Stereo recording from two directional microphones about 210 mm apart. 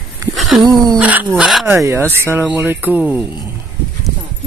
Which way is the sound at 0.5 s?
5° right (ahead or behind).